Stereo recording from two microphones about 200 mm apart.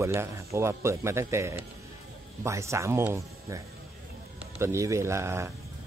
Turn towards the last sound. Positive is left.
turn(degrees=-15)  # may be behind; listen again after turning